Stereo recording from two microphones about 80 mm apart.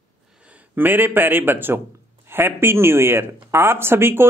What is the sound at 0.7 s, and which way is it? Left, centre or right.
Speech, right.